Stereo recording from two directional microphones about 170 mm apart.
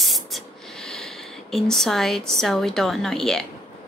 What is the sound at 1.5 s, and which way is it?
A woman's voice, centre (ahead or behind).